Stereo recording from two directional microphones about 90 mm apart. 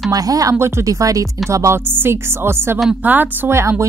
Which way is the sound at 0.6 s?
30° right (ahead or behind).